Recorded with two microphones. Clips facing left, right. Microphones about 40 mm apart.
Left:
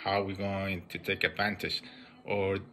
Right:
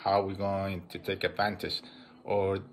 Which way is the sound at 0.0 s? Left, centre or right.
Left.